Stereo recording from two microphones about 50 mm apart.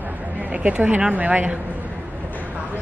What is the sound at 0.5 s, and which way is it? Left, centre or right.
A woman's voice, right.